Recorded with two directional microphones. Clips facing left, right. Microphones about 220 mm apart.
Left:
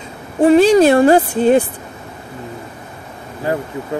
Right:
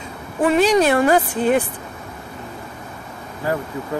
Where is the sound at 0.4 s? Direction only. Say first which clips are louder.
Left 6 dB; 30° left (ahead or behind).